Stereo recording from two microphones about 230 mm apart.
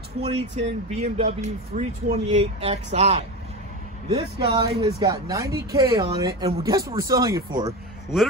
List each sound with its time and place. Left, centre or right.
0.2 s speech: right